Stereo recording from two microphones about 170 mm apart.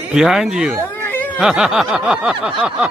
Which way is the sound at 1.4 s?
5° right (ahead or behind).